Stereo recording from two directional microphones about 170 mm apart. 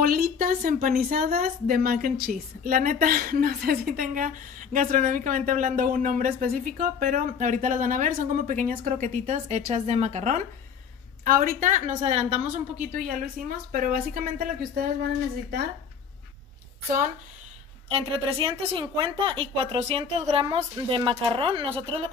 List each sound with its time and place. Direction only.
0.0 s a woman's voice: 60° right (ahead or behind); by 10.4 s 40° right (ahead or behind)
11.2 s a woman's voice: 55° right (ahead or behind)
13.2 s a woman's voice: 55° right (ahead or behind)
17.8 s a woman's voice: 35° right (ahead or behind)